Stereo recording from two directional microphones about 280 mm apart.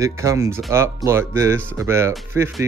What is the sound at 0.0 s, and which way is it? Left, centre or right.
Speech, centre.